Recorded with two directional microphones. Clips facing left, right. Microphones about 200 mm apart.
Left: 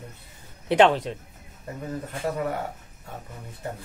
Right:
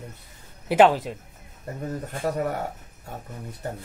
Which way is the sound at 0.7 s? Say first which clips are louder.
Right 1 dB; 5° right (ahead or behind).